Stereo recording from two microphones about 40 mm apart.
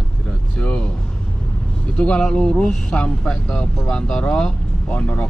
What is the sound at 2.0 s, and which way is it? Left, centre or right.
Speech, left.